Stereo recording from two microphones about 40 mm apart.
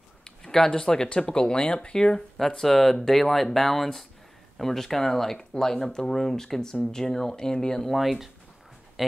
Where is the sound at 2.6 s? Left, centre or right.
Centre.